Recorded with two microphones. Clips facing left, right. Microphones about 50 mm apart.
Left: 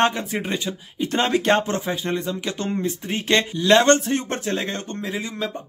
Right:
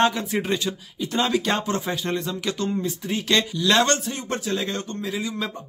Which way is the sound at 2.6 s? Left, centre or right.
Left.